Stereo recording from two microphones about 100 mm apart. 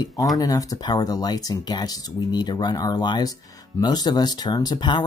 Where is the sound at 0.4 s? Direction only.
40° left (ahead or behind).